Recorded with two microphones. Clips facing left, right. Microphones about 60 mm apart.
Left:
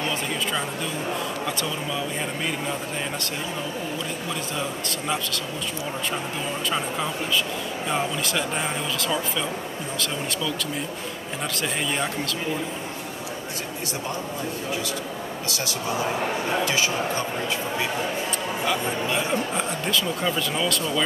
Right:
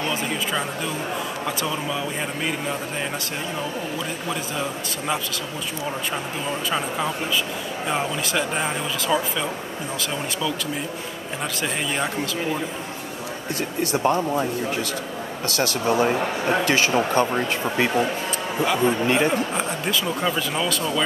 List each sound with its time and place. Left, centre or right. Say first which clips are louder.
0.0 s speech: right 1 dB; centre
4.6 s a man's voice: right 1 dB; centre
7.9 s speech: right 1 dB; centre
13.9 s speech: right 11 dB; right
18.6 s speech: right 7 dB; centre
19.0 s speech: right 6 dB; right
19.3 s speech: right 1 dB; centre